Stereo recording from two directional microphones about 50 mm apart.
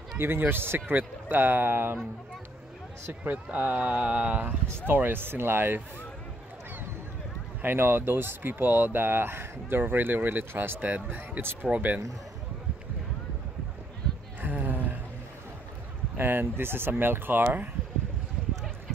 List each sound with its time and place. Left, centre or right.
0.2 s speech: right
3.5 s mantra: right
4.8 s speech: right
7.6 s speech: right
11.7 s speech: centre
14.4 s a sound: right
16.2 s speech: right
16.9 s mantra: right